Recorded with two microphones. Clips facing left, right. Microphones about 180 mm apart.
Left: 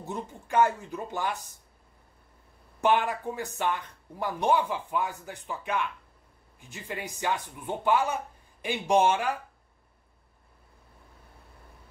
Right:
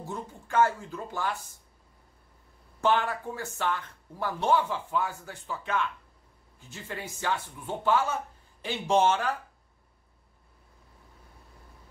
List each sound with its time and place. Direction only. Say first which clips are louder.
0.0 s speech: left 1 dB; 20° left (ahead or behind)
2.8 s speech: left 1 dB; 15° left (ahead or behind)